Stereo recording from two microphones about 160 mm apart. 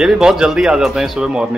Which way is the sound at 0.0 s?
5° right (ahead or behind).